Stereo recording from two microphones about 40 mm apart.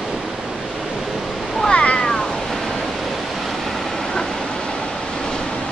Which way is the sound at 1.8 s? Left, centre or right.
Left.